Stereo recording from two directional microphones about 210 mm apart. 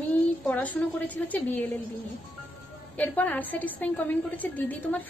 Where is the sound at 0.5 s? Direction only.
5° left (ahead or behind).